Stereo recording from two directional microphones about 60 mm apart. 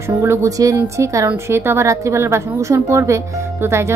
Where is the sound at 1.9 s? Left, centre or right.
Right.